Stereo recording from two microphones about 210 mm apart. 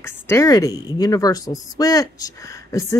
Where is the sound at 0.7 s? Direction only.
15° right (ahead or behind).